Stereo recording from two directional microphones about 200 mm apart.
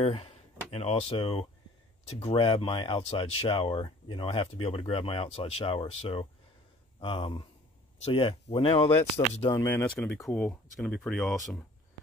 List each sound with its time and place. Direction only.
0.0 s speech: 25° left (ahead or behind)
7.0 s speech: 25° left (ahead or behind)
9.7 s speech: 10° left (ahead or behind)